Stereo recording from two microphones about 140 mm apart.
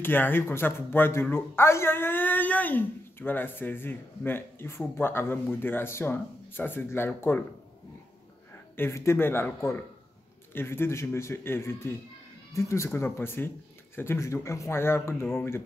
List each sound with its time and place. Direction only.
0.0 s a man's voice: 15° left (ahead or behind)
8.7 s a man's voice: 15° left (ahead or behind)